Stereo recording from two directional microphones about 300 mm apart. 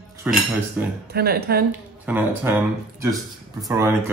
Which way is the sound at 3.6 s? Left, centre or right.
Centre.